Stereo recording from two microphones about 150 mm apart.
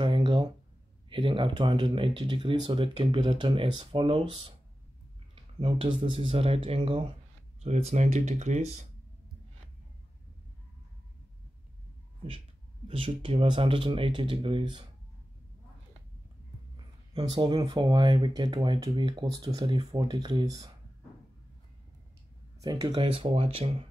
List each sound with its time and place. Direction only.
0.0 s a sound: 35° right (ahead or behind)
1.1 s speech: 35° right (ahead or behind); by 8.8 s 50° right (ahead or behind)
12.8 s speech: 35° right (ahead or behind)
16.7 s speech: 35° right (ahead or behind)
22.6 s speech: 25° right (ahead or behind)
23.0 s speech: 40° right (ahead or behind)